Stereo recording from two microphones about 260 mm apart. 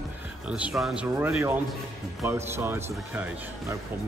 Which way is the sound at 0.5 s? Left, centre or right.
Centre.